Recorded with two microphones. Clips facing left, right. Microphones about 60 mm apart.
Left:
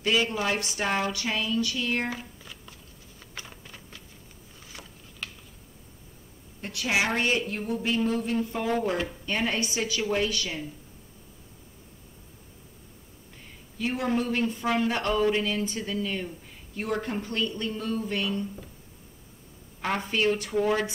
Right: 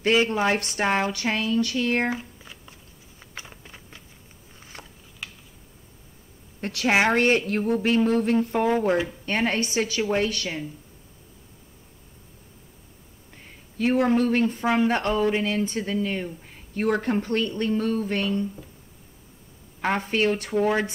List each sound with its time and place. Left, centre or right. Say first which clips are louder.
0.0 s speech: right 5 dB; right
2.0 s a sound: right 6 dB; right
4.7 s a sound: right 2 dB; right
5.2 s a sound: even; centre
6.6 s a woman's voice: right 6 dB; right
13.7 s speech: right 7 dB; right
16.7 s speech: right 7 dB; right
20.0 s speech: right 2 dB; right
20.5 s speech: right 4 dB; right